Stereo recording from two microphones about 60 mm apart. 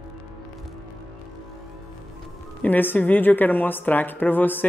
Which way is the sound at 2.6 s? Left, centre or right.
Left.